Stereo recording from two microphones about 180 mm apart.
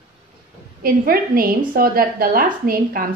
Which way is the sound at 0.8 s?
55° right (ahead or behind).